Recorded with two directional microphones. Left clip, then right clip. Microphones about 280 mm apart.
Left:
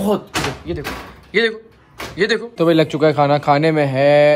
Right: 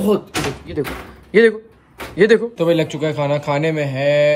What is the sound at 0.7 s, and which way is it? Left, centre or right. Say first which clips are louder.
Speech: right 3 dB; left.